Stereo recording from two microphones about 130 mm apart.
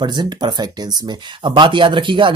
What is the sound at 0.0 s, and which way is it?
Speech, 35° right (ahead or behind).